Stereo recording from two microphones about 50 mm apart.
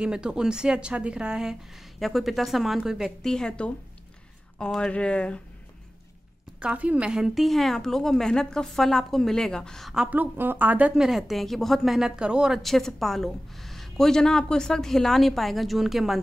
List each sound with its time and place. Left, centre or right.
0.0 s a woman's voice: centre
3.2 s a woman's voice: centre
4.6 s speech: centre
6.6 s a woman's voice: right
7.1 s a woman's voice: centre
7.3 s a woman's voice: centre
10.0 s a woman's voice: right
11.0 s a woman's voice: centre
12.2 s a woman's voice: centre
12.6 s a woman's voice: centre